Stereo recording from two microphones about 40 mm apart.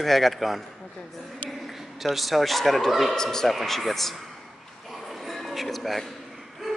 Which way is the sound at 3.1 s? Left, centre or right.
Centre.